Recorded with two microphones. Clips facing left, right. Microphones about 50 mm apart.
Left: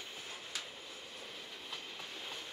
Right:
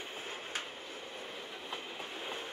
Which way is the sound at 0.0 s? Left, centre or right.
Right.